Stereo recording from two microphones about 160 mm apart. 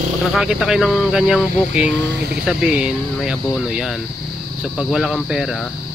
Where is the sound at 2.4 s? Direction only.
5° right (ahead or behind).